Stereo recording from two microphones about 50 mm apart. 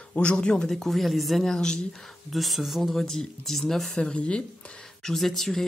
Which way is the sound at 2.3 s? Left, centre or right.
Centre.